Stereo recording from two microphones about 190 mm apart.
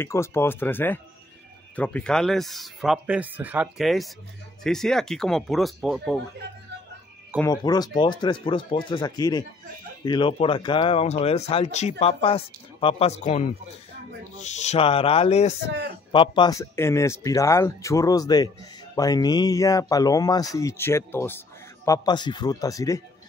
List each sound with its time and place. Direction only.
0.0 s speech: 15° left (ahead or behind)
7.4 s speech: 20° left (ahead or behind)